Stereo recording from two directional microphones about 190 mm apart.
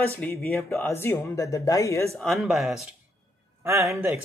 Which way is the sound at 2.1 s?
Centre (ahead or behind).